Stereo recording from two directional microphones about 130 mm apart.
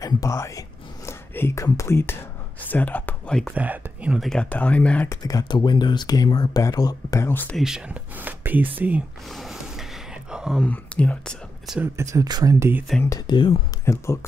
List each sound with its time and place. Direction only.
0.0 s speech: 25° left (ahead or behind); by 3.5 s 5° left (ahead or behind)
3.5 s speech: 10° right (ahead or behind)
4.2 s speech: 5° left (ahead or behind)
5.1 s speech: 30° left (ahead or behind)
7.5 s speech: 5° right (ahead or behind)
9.3 s a sound: centre (ahead or behind)
10.6 s speech: 10° left (ahead or behind)
11.8 s speech: 25° right (ahead or behind)
13.3 s speech: 40° left (ahead or behind)
13.8 s speech: 20° left (ahead or behind)